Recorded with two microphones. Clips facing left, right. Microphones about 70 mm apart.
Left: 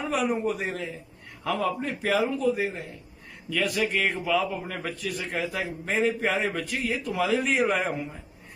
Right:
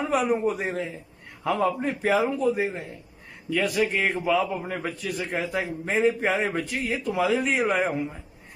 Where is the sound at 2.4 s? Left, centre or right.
Centre.